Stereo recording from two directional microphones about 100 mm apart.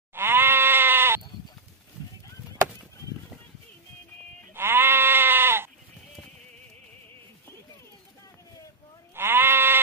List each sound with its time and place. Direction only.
0.1 s sheep: 20° right (ahead or behind)
4.6 s sheep: 25° right (ahead or behind)
9.1 s sheep: 20° right (ahead or behind)